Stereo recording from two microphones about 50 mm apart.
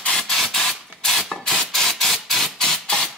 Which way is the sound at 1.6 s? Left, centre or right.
Centre.